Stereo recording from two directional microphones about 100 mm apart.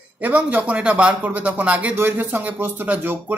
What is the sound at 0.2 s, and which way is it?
A man's voice, 15° right (ahead or behind).